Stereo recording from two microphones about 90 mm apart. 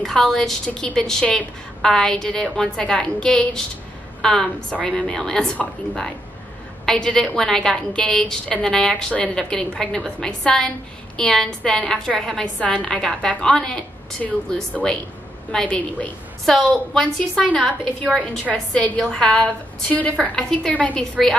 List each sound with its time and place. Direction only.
0.0 s a woman's voice: 5° left (ahead or behind)
15.5 s a woman's voice: 10° left (ahead or behind)
18.1 s a woman's voice: centre (ahead or behind)